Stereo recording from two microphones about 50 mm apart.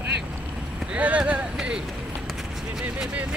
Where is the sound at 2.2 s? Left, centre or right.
Centre.